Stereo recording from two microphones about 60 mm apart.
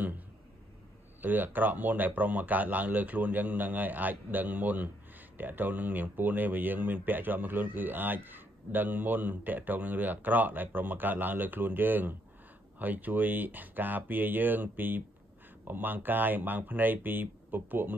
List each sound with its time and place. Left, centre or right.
1.2 s a man's voice: right